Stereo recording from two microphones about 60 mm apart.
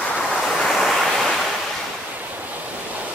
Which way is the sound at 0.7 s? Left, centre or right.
Centre.